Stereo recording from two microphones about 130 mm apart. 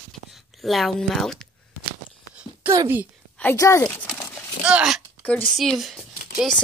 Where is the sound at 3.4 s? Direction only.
20° left (ahead or behind).